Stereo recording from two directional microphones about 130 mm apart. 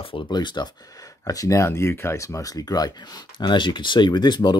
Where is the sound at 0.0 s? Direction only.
40° left (ahead or behind).